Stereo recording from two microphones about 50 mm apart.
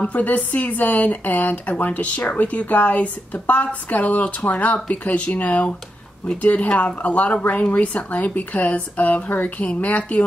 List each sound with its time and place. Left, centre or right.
0.0 s speech: left